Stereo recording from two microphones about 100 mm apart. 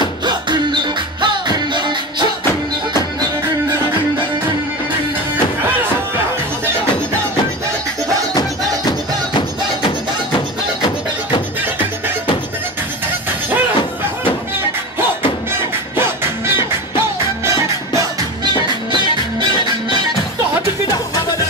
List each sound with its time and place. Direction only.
0.2 s music: 50° right (ahead or behind)